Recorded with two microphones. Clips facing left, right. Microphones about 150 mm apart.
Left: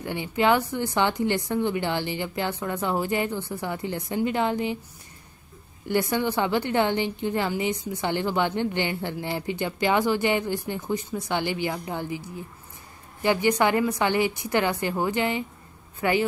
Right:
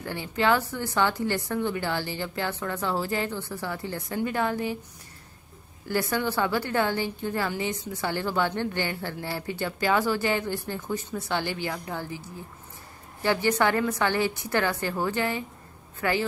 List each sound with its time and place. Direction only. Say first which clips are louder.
0.0 s a woman's voice: left 3 dB; 15° left (ahead or behind)
5.9 s a woman's voice: left 3 dB; 20° left (ahead or behind)
13.2 s a woman's voice: left 2 dB; 15° left (ahead or behind)